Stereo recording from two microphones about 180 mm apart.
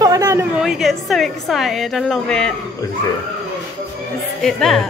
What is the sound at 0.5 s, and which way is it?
A woman's voice, 5° right (ahead or behind).